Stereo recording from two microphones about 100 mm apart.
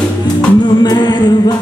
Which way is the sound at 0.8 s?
45° left (ahead or behind).